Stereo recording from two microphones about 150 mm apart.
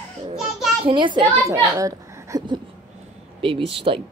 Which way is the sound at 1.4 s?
20° right (ahead or behind).